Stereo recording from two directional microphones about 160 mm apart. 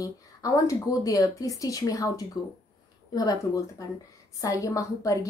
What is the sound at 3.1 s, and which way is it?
A woman's voice, 25° left (ahead or behind).